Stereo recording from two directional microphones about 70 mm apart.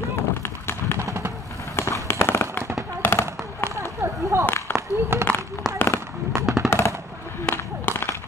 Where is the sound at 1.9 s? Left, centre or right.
Left.